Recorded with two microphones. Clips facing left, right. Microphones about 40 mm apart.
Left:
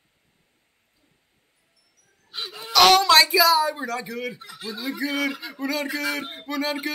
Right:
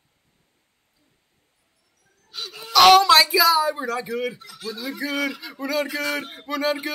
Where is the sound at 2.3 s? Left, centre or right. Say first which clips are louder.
Left 1 dB; left.